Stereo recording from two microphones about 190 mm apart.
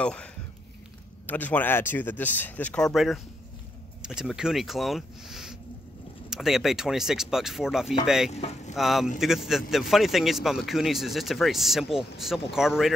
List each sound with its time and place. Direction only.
0.0 s a man's voice: 5° left (ahead or behind)
8.3 s speech: 35° left (ahead or behind)
8.7 s a man's voice: centre (ahead or behind)